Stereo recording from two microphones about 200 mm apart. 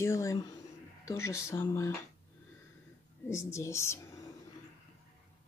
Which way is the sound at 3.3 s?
15° left (ahead or behind).